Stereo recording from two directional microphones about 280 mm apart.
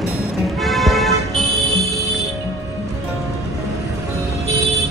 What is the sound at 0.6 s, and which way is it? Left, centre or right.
Music, centre.